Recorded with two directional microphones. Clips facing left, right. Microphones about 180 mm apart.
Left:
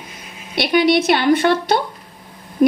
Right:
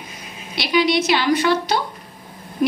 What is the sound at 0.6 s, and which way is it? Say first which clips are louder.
A woman's voice: left 3 dB; 55° left (ahead or behind).